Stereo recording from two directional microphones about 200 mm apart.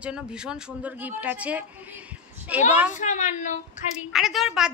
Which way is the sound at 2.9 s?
35° left (ahead or behind).